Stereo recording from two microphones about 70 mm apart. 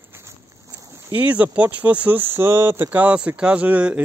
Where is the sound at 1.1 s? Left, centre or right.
Right.